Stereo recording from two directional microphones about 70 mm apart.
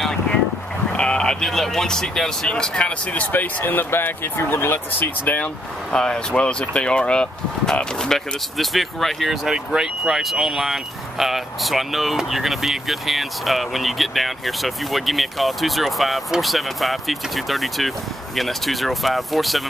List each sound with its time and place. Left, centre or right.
0.0 s boat: centre
0.9 s speech: centre
3.1 s speech: left
5.4 s speech: centre